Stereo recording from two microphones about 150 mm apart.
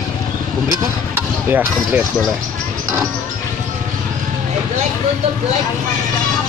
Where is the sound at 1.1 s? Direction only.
15° right (ahead or behind).